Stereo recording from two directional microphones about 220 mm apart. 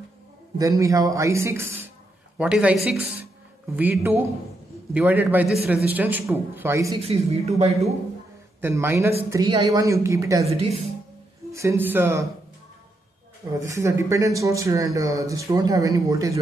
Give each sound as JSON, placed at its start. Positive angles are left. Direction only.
{"t": 0.6, "sound": "speech", "side_deg": -15}
{"t": 7.0, "sound": "a woman's voice", "side_deg": -25}
{"t": 8.5, "sound": "speech", "side_deg": -10}
{"t": 10.4, "sound": "a woman's voice", "side_deg": -30}
{"t": 11.5, "sound": "speech", "side_deg": -10}
{"t": 13.6, "sound": "speech", "side_deg": -15}